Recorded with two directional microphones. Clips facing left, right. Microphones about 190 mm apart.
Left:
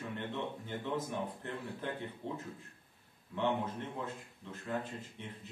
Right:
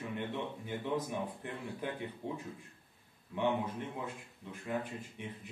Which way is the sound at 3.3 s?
15° right (ahead or behind).